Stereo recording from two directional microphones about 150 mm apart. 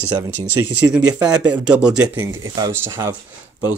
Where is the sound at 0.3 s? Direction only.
10° right (ahead or behind).